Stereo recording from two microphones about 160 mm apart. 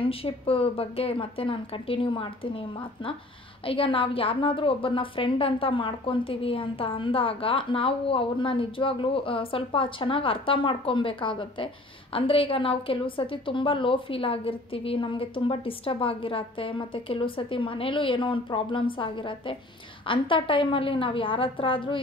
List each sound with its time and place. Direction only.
0.0 s a woman's voice: 35° left (ahead or behind)